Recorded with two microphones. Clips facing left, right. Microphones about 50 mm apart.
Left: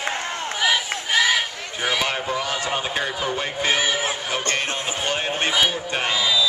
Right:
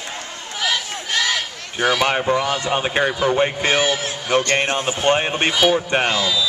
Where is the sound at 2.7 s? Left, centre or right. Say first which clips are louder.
Right 6 dB; right.